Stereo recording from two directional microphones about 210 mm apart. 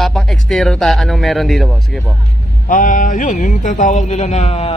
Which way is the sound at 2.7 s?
40° left (ahead or behind).